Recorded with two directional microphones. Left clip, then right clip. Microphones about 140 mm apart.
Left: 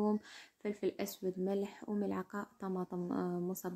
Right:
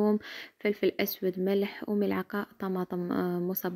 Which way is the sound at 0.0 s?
25° right (ahead or behind).